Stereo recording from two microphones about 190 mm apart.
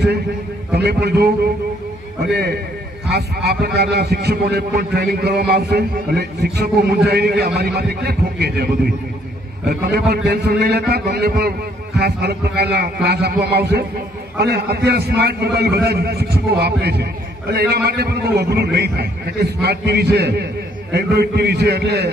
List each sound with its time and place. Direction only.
0.7 s a man's voice: 55° right (ahead or behind)
9.7 s a man's voice: 55° right (ahead or behind)